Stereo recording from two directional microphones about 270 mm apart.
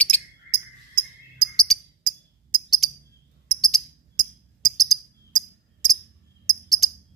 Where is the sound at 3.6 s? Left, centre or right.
Centre.